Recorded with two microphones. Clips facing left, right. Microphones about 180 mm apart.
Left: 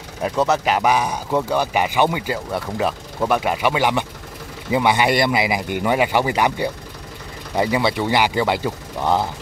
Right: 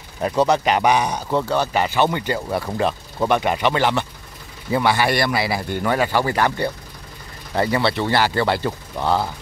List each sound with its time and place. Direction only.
0.2 s speech: 5° left (ahead or behind)